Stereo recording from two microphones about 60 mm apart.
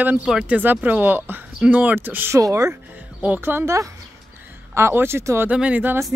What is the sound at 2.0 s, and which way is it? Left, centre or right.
Speech, right.